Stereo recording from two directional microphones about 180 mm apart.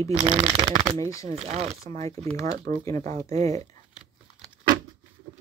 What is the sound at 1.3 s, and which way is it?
Speech, 35° right (ahead or behind).